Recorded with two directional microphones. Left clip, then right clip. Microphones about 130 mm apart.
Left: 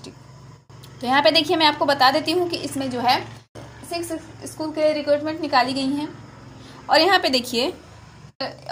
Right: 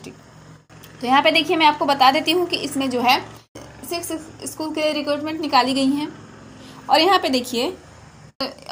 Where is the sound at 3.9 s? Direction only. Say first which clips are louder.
Right 1 dB; 15° right (ahead or behind).